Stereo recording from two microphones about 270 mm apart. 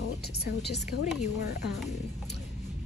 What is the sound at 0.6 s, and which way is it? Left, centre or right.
Speech, left.